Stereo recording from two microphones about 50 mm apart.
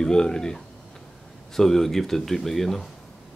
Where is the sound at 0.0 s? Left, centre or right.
Centre.